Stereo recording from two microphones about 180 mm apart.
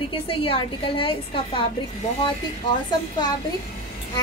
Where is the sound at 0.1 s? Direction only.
30° left (ahead or behind).